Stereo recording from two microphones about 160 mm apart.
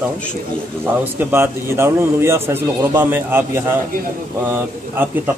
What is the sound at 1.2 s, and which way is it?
A man's voice, 15° right (ahead or behind).